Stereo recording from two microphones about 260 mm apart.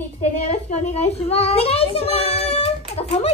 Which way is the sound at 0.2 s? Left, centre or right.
Left.